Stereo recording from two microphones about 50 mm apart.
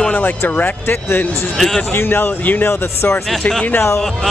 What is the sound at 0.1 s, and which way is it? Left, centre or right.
Speech, left.